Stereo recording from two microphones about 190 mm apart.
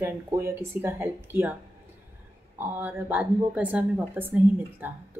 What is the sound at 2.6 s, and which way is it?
Speech, 10° right (ahead or behind).